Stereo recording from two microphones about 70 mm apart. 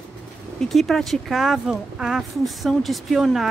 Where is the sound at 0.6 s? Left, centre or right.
Centre.